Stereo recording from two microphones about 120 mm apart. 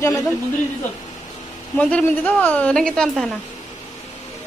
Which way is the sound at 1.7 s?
10° left (ahead or behind).